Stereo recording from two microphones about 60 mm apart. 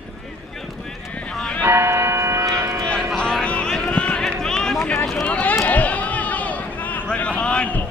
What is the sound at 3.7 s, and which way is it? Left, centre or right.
Run, centre.